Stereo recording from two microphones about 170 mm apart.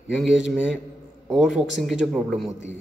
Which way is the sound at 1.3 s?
5° right (ahead or behind).